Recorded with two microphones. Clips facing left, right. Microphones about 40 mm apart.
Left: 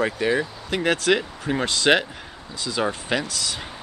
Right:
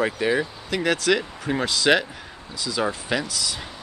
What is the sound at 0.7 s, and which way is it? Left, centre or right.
Speech, left.